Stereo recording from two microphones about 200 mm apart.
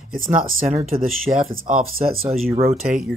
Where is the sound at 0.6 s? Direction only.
35° right (ahead or behind).